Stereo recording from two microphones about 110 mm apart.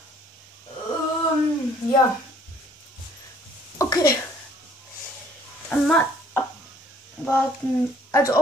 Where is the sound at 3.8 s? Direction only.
35° left (ahead or behind).